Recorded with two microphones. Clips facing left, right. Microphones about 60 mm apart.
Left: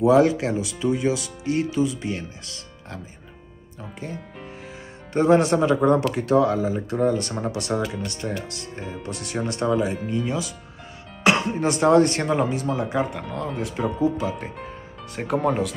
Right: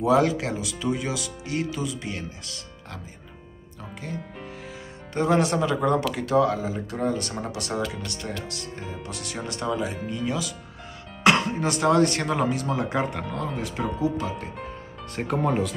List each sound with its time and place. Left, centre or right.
0.0 s speech: left
5.1 s speech: left
7.8 s speech: centre
9.0 s speech: left
9.9 s speech: centre
11.2 s music: centre
11.7 s speech: left
12.6 s speech: centre